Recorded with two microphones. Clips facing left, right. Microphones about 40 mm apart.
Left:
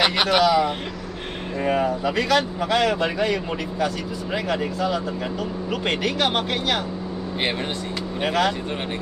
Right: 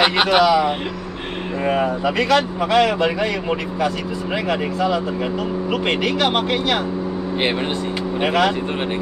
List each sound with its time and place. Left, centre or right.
0.0 s speech: centre
2.0 s speech: centre
4.5 s speech: centre
8.2 s speech: centre